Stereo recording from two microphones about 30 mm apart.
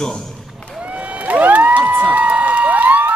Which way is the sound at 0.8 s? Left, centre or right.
Right.